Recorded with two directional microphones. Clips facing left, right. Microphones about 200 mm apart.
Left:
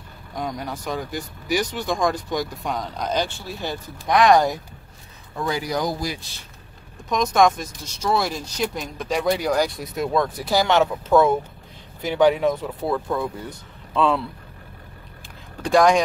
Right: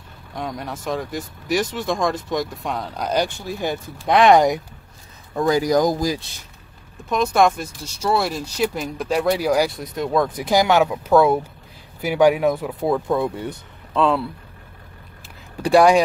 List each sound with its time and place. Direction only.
0.3 s speech: centre (ahead or behind); by 4.6 s 20° right (ahead or behind)
5.3 s speech: 45° right (ahead or behind)
7.1 s speech: 5° right (ahead or behind)
10.3 s speech: 15° right (ahead or behind)
13.9 s speech: centre (ahead or behind)
15.6 s speech: 10° right (ahead or behind)